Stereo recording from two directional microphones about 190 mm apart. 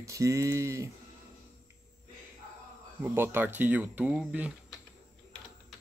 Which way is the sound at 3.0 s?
10° right (ahead or behind).